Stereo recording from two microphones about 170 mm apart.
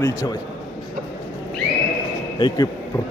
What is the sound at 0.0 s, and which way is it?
Speech, 15° left (ahead or behind).